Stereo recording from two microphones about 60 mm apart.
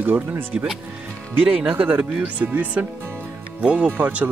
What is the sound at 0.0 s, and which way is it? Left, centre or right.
Speech, right.